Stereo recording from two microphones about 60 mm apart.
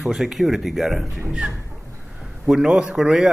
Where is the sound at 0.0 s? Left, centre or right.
Centre.